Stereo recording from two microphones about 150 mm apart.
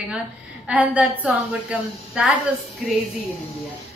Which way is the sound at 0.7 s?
10° right (ahead or behind).